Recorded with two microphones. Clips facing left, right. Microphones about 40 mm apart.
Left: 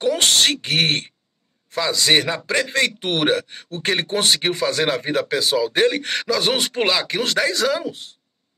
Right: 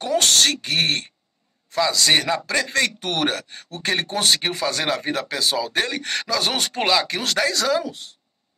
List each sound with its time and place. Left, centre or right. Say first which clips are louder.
0.0 s speech: left 1 dB; left
1.7 s speech: left 1 dB; centre
5.9 s speech: left 7 dB; left
6.1 s speech: left 3 dB; centre